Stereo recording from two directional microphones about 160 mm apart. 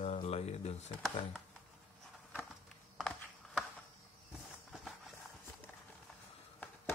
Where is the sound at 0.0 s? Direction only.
45° left (ahead or behind).